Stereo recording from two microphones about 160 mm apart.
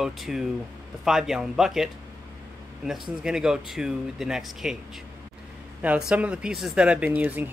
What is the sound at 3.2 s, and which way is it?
Speech, 5° right (ahead or behind).